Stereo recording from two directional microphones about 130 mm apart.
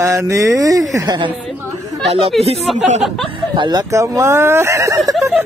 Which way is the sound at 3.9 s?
25° right (ahead or behind).